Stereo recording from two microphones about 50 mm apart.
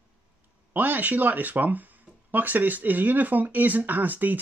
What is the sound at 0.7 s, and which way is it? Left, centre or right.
Speech, right.